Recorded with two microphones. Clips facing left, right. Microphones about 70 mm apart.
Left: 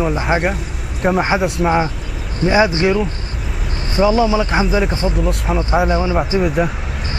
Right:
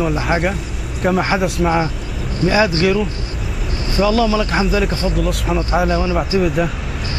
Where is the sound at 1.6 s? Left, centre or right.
Centre.